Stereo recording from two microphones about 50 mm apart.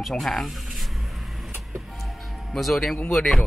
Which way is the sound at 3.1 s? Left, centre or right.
Centre.